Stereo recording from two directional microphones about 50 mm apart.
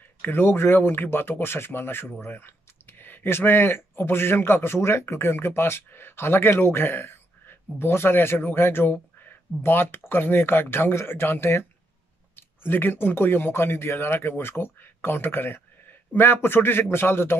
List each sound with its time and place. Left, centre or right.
0.2 s a man's voice: left